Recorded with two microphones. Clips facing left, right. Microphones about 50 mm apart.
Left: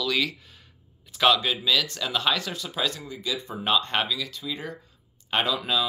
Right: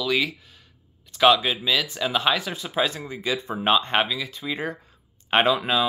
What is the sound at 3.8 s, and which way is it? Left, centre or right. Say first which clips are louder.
Speech: right 3 dB; right.